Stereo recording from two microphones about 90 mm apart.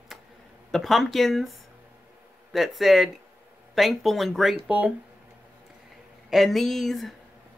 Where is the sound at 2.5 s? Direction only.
Centre (ahead or behind).